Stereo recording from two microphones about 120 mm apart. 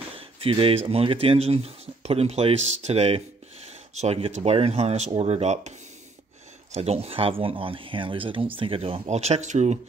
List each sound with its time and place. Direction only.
0.2 s speech: 50° right (ahead or behind); by 5.8 s 70° right (ahead or behind)
6.7 s speech: 60° right (ahead or behind); by 9.8 s 75° right (ahead or behind)